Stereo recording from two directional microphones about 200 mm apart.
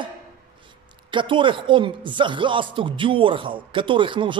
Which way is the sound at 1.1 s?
25° right (ahead or behind).